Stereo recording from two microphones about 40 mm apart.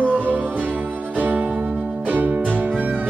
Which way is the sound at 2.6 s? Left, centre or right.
Right.